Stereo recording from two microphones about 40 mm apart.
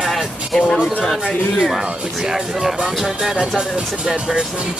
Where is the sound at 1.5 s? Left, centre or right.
Centre.